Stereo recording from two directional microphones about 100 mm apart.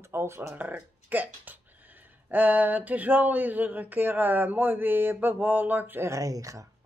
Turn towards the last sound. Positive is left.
turn(degrees=-35)  # may be behind; listen again after turning